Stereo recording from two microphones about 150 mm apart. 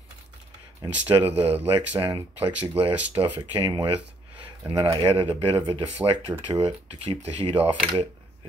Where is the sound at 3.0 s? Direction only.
10° right (ahead or behind).